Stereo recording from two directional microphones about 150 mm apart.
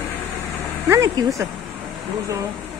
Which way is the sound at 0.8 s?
20° right (ahead or behind).